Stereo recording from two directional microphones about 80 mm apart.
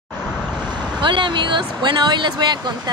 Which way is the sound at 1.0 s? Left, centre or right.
Right.